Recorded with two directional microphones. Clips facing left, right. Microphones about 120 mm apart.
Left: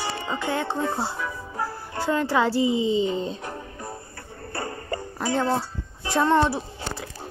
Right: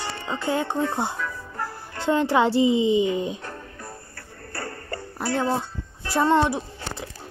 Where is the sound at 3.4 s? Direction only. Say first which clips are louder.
Left 3 dB; 15° left (ahead or behind).